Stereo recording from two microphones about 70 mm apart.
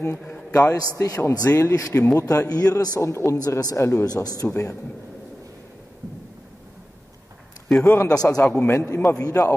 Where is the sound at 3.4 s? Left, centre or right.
Left.